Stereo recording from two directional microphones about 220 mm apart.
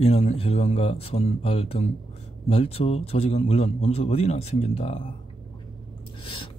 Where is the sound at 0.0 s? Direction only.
30° left (ahead or behind).